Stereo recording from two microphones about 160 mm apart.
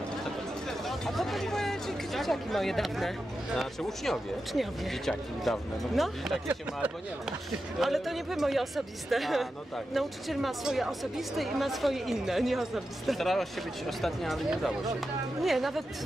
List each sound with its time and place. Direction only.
0.7 s speech: centre (ahead or behind)